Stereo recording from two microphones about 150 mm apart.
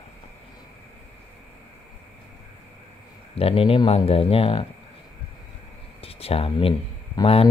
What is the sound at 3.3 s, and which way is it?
Speech, 40° left (ahead or behind).